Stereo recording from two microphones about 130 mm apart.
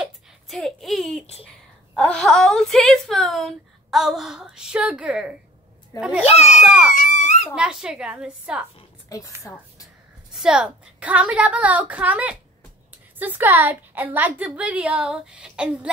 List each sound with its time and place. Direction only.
0.0 s a sound: centre (ahead or behind)
2.0 s a woman's voice: 5° left (ahead or behind)
6.2 s a child's voice: 55° left (ahead or behind)
6.6 s a woman's voice: 5° right (ahead or behind)
6.9 s a sound: 75° left (ahead or behind)
7.5 s a woman's voice: 5° right (ahead or behind)
9.1 s a woman's voice: 25° left (ahead or behind)
10.3 s a woman's voice: 5° right (ahead or behind)